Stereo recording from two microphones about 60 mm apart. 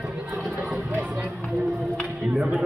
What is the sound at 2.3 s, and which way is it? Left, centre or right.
Music, centre.